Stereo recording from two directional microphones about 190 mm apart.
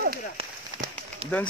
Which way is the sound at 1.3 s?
10° left (ahead or behind).